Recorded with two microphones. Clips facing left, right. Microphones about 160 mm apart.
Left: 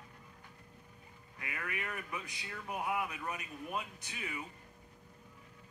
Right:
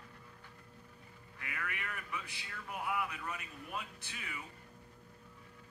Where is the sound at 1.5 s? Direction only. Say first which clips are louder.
Left 2 dB; 35° left (ahead or behind).